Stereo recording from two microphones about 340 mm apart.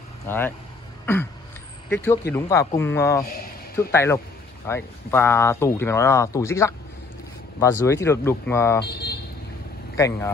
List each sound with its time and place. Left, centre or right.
0.3 s speech: centre
1.9 s speech: centre
8.7 s speech: left
9.9 s speech: centre